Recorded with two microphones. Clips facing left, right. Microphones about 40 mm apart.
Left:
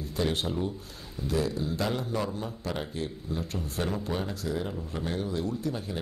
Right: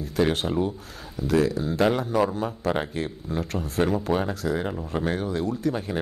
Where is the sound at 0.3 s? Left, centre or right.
Right.